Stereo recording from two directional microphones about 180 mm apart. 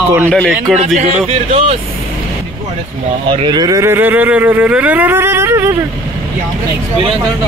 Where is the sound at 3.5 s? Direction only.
20° right (ahead or behind).